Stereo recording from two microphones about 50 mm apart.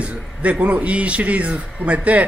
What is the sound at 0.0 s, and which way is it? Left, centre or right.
Speech, right.